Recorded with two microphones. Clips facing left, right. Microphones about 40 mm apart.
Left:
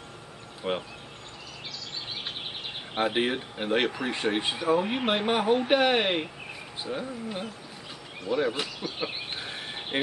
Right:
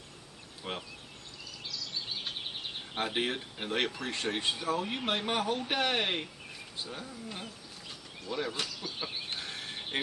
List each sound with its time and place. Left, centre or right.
0.7 s speech: left
3.0 s speech: centre
9.0 s a sound: left